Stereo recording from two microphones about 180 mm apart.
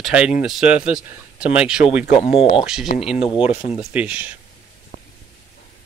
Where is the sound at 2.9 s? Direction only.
50° left (ahead or behind).